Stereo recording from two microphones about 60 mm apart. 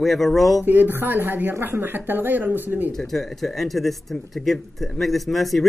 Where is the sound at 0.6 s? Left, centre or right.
Right.